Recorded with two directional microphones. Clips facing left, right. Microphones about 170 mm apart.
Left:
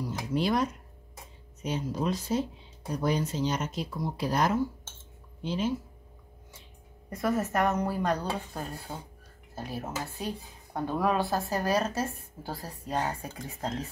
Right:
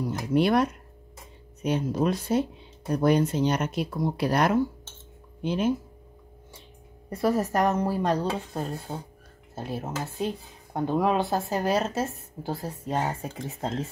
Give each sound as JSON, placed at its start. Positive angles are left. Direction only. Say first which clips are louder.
{"t": 0.3, "sound": "speech", "louder": "right 6 dB", "side_deg": -65}
{"t": 7.1, "sound": "speech", "louder": "right 4 dB", "side_deg": -30}